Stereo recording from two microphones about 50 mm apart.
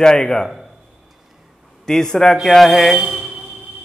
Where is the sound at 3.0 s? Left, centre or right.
Centre.